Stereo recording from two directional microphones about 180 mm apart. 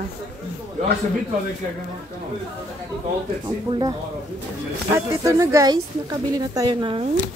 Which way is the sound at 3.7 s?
25° right (ahead or behind).